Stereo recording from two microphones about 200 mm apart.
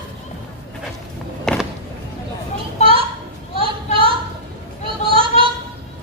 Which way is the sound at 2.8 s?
25° right (ahead or behind).